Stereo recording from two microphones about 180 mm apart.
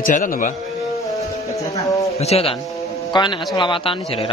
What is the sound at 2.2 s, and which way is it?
Speech, 35° left (ahead or behind).